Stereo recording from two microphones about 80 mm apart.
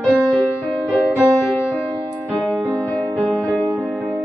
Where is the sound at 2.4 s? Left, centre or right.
Centre.